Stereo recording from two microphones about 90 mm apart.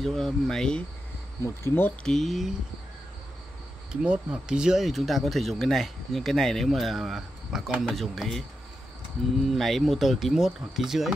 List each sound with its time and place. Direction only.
0.0 s speech: 5° left (ahead or behind)
1.4 s speech: 30° left (ahead or behind)
2.0 s speech: 5° left (ahead or behind)
3.9 s speech: 10° right (ahead or behind)
9.5 s speech: centre (ahead or behind)